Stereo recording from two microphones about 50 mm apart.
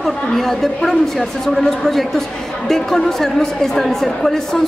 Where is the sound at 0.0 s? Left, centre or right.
Centre.